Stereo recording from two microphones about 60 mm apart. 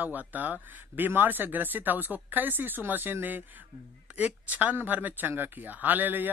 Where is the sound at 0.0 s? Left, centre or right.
Right.